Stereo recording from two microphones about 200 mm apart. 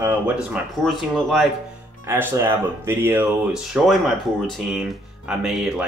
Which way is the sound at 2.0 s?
10° right (ahead or behind).